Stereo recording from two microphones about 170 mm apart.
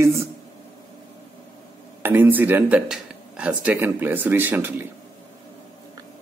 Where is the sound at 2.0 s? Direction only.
10° right (ahead or behind).